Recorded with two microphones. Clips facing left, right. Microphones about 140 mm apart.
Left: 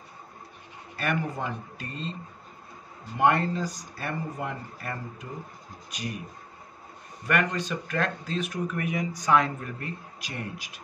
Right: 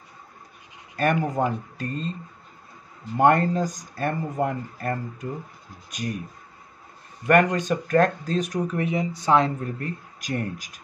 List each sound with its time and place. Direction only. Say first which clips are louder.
0.9 s speech: right 7 dB; 45° right (ahead or behind)
3.2 s speech: right 5 dB; 45° right (ahead or behind)
7.5 s speech: right 9 dB; 45° right (ahead or behind)
8.7 s speech: right 4 dB; 30° right (ahead or behind); by 10.8 s 45° right (ahead or behind)